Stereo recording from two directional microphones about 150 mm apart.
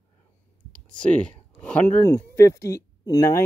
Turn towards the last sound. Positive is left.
turn(degrees=25)  # may be behind; listen again after turning